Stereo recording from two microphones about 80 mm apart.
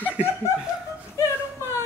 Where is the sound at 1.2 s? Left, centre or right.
Left.